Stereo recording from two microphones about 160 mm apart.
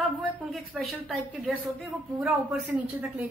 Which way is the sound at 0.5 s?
Centre (ahead or behind).